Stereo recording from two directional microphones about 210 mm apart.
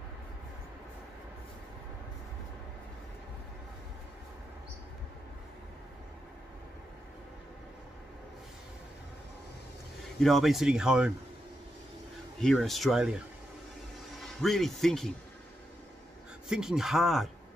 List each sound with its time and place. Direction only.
10.2 s speech: centre (ahead or behind)
12.4 s speech: centre (ahead or behind)
14.2 s speech: centre (ahead or behind)
16.4 s speech: 5° right (ahead or behind)